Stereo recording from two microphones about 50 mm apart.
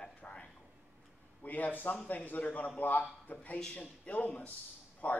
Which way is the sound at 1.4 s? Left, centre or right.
Left.